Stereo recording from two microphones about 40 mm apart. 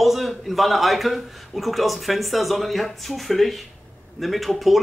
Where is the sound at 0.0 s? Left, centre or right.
Centre.